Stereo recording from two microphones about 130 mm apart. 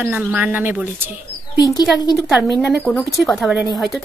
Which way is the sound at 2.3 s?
5° right (ahead or behind).